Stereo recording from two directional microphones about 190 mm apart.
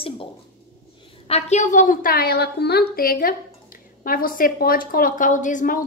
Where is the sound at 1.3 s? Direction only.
35° left (ahead or behind).